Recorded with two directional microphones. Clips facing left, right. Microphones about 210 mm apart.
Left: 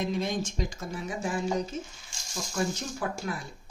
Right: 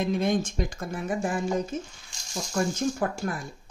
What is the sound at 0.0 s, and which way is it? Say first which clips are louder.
Speech: right 5 dB; 55° right (ahead or behind).